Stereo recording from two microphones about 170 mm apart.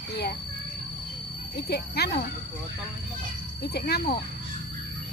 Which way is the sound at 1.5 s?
70° left (ahead or behind).